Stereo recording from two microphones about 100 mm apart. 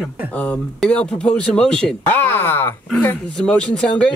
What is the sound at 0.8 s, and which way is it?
Speech, 10° left (ahead or behind).